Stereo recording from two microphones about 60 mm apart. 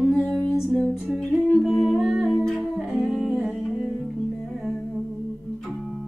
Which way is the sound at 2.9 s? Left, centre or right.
Centre.